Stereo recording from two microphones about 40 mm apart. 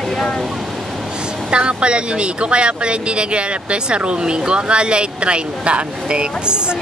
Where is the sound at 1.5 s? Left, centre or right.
Right.